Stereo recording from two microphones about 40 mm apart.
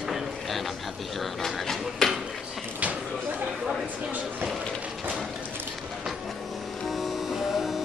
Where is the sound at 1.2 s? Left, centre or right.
Centre.